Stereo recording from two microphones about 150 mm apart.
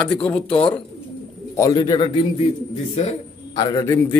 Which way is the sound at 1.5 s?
20° left (ahead or behind).